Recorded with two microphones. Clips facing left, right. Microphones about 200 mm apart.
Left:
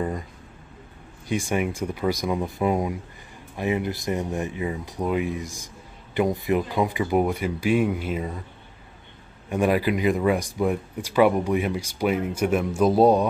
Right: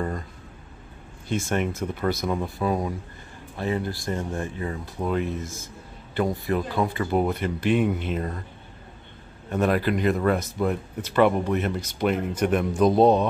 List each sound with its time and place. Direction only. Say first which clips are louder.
1.3 s speech: left 1 dB; 10° left (ahead or behind)
9.5 s speech: left 1 dB; 10° left (ahead or behind)